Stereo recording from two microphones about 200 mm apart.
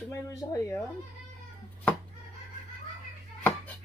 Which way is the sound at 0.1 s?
15° left (ahead or behind).